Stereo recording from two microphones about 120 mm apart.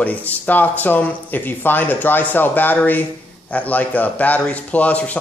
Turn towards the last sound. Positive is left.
turn(degrees=10)  # may be behind; listen again after turning